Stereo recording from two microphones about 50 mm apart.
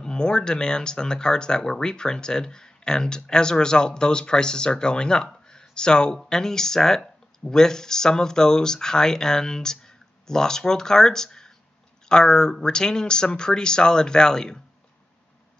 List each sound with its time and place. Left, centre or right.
0.0 s speech: centre